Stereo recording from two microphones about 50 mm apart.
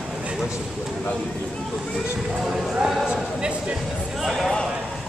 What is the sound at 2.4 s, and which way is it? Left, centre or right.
Speech, centre.